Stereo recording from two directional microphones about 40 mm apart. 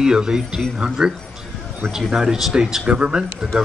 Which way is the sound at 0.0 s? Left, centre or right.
Centre.